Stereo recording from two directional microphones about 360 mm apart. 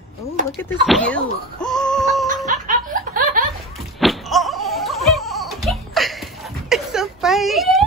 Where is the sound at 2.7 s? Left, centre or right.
Right.